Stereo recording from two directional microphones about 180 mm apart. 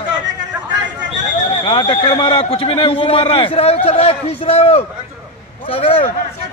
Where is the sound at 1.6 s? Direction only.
30° left (ahead or behind).